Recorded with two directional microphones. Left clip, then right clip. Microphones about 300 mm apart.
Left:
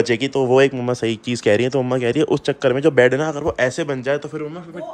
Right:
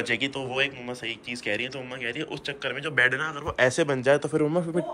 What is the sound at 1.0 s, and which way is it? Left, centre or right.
Speech, left.